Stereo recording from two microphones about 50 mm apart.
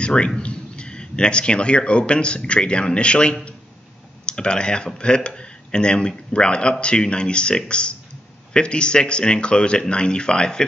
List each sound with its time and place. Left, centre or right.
0.0 s a man's voice: centre